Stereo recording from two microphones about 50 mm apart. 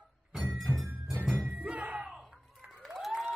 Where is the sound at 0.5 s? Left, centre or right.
Centre.